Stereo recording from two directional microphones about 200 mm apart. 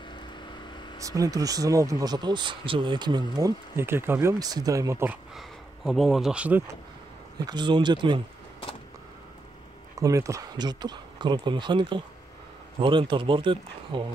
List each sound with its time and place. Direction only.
0.9 s speech: 15° right (ahead or behind)
5.9 s speech: centre (ahead or behind)
7.3 s speech: 20° right (ahead or behind)
9.9 s speech: 15° right (ahead or behind)